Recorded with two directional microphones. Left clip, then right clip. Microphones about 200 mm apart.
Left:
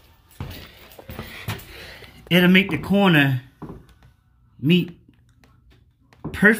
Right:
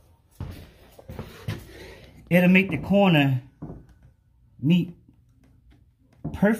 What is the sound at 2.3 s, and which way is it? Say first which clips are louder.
Speech: left 3 dB; 40° left (ahead or behind).